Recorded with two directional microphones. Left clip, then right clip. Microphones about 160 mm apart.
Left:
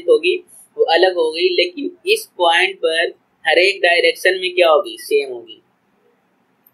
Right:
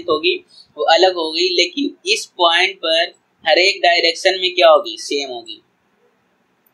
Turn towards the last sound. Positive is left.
turn(degrees=-25)  # may be behind; listen again after turning